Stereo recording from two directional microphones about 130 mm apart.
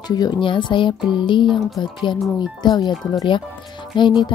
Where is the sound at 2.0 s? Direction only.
35° left (ahead or behind).